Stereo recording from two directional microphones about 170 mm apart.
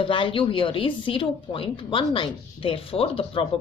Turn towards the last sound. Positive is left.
turn(degrees=35)  # may be behind; listen again after turning